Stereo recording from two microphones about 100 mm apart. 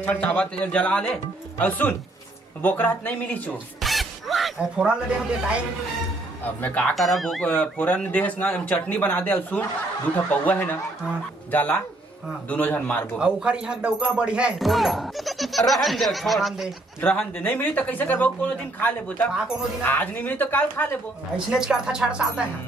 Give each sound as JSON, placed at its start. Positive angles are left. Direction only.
{"t": 0.0, "sound": "speech", "side_deg": 15}
{"t": 1.7, "sound": "speech", "side_deg": 20}
{"t": 3.8, "sound": "music", "side_deg": 0}
{"t": 4.6, "sound": "speech", "side_deg": -10}
{"t": 6.4, "sound": "speech", "side_deg": 15}
{"t": 7.0, "sound": "speech", "side_deg": 0}
{"t": 13.2, "sound": "speech", "side_deg": -10}
{"t": 17.0, "sound": "speech", "side_deg": 15}
{"t": 21.5, "sound": "speech", "side_deg": -5}